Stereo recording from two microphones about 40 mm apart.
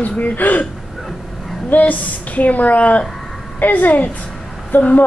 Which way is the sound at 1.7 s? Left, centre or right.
Left.